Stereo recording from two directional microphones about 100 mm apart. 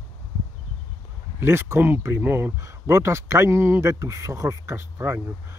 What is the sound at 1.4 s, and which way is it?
Speech, 25° right (ahead or behind).